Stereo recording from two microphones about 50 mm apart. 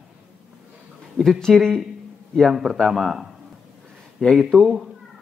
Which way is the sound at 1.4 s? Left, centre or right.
Centre.